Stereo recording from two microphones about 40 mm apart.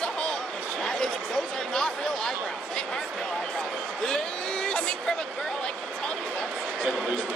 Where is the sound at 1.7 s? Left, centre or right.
Centre.